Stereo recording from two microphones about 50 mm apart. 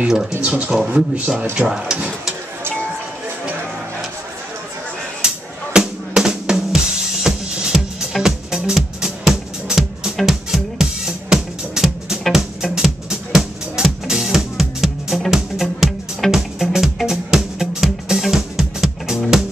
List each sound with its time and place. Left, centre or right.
0.4 s speech: right
1.7 s speech: centre
5.2 s drum: centre
10.1 s music: centre
12.7 s music: centre